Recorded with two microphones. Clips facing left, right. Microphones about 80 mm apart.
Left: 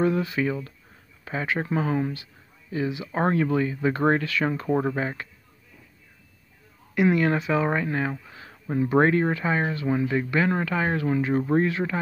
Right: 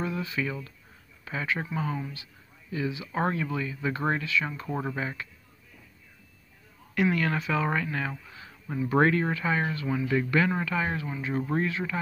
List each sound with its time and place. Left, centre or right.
0.0 s speech: left
1.7 s speech: left
2.7 s speech: left
4.6 s speech: left
7.1 s speech: left
8.8 s speech: left